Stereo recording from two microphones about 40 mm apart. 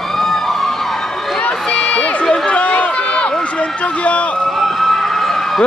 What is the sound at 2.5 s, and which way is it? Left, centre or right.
Run, left.